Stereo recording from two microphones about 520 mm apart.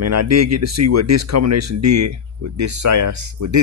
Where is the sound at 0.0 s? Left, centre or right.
Right.